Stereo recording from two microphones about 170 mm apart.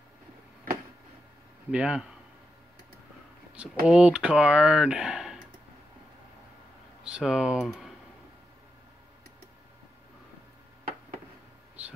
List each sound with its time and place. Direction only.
1.7 s speech: 5° right (ahead or behind)
3.5 s speech: 5° right (ahead or behind)
7.1 s speech: 5° right (ahead or behind)